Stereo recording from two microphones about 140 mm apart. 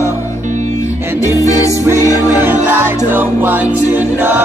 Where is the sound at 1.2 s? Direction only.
25° left (ahead or behind).